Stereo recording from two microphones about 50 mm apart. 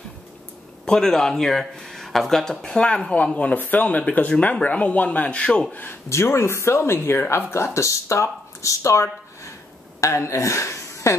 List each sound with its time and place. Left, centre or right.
0.8 s speech: centre
3.5 s speech: left
6.0 s speech: left